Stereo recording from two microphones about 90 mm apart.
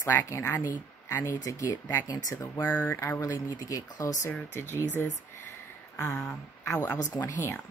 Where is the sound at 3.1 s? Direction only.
40° left (ahead or behind).